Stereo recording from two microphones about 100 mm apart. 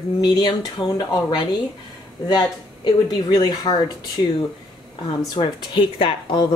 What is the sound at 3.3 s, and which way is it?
Speech, 45° left (ahead or behind).